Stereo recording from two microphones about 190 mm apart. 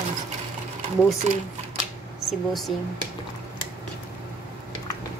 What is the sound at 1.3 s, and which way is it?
Speech, 35° right (ahead or behind).